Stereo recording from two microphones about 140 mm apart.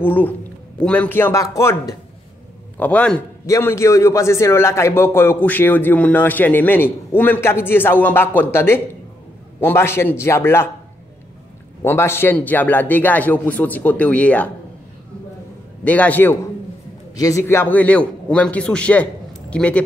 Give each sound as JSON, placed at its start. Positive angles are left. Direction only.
{"t": 0.0, "sound": "a man's voice", "side_deg": 15}
{"t": 2.8, "sound": "a man's voice", "side_deg": 10}
{"t": 3.4, "sound": "a man's voice", "side_deg": 20}
{"t": 11.8, "sound": "a man's voice", "side_deg": 15}
{"t": 15.8, "sound": "a man's voice", "side_deg": 10}
{"t": 17.1, "sound": "a man's voice", "side_deg": 25}